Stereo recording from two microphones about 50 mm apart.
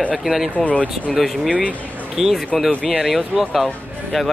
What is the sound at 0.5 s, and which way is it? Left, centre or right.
Speech, left.